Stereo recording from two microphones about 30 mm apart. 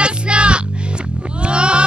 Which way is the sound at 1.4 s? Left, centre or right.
Right.